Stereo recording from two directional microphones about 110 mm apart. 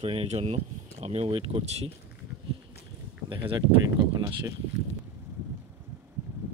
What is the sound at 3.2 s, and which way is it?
Speech, 50° right (ahead or behind).